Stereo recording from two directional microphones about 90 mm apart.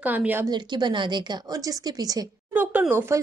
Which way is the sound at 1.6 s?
45° right (ahead or behind).